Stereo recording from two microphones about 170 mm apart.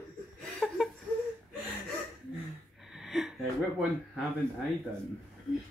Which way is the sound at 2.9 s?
Centre (ahead or behind).